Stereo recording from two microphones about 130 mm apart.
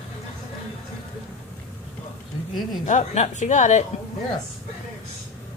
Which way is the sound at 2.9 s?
60° left (ahead or behind).